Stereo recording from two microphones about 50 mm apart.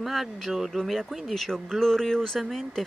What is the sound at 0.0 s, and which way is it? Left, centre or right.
Speech, centre.